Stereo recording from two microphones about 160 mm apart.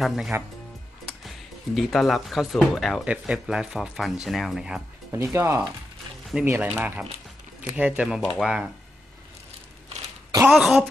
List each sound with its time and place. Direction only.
0.0 s speech: centre (ahead or behind)
1.8 s speech: centre (ahead or behind)
5.1 s speech: 15° right (ahead or behind)
10.5 s speech: centre (ahead or behind)